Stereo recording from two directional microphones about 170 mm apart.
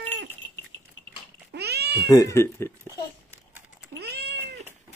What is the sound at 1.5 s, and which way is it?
Cat, 70° right (ahead or behind).